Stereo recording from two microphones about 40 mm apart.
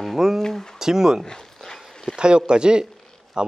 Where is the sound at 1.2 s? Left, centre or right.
Centre.